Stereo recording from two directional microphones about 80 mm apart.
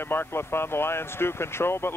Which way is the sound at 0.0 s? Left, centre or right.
Left.